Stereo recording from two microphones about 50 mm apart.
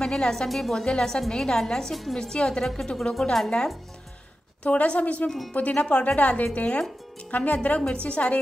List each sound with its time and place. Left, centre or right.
0.0 s speech: centre
2.6 s speech: centre
3.2 s a woman's voice: centre
4.6 s a woman's voice: left